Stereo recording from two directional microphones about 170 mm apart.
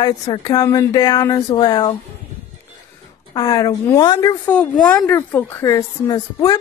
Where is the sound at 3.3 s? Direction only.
25° left (ahead or behind).